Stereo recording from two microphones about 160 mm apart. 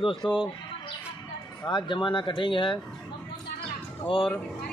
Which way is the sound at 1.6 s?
30° left (ahead or behind).